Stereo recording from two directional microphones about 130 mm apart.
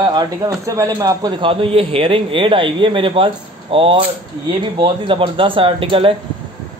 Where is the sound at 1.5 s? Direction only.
45° right (ahead or behind).